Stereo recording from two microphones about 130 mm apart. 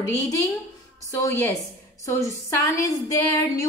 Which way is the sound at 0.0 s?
20° left (ahead or behind).